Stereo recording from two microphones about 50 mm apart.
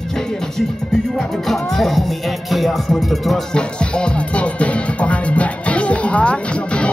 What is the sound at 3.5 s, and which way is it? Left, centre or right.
Music, centre.